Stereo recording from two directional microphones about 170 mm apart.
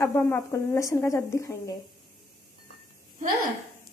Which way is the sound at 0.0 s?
15° left (ahead or behind).